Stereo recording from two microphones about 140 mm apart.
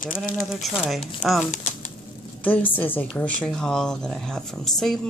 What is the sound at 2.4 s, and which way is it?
Speech, 10° left (ahead or behind).